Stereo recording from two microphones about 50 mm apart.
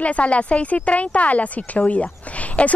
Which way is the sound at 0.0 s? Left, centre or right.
Left.